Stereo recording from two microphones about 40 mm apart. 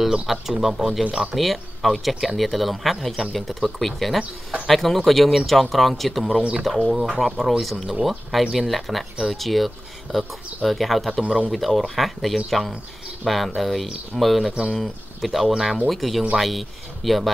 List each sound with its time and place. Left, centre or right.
0.0 s speech: centre
1.3 s speech: centre
4.2 s speech: right
4.6 s speech: centre